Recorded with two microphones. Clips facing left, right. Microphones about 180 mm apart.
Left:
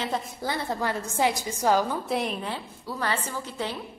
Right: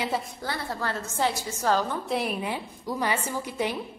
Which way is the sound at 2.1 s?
5° right (ahead or behind).